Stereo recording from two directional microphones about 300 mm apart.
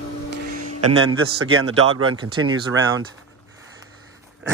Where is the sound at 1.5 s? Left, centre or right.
Right.